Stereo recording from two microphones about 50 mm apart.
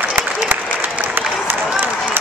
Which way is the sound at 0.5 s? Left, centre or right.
Right.